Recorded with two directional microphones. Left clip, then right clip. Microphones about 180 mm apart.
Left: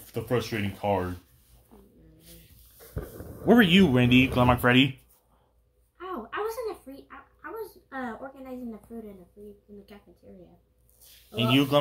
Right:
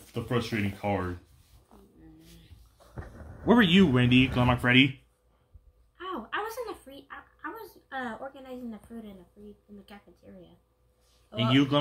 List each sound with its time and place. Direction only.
0.0 s speech: 25° left (ahead or behind)
3.4 s speech: 15° left (ahead or behind)
5.9 s a sound: 50° right (ahead or behind)
11.5 s speech: 15° left (ahead or behind)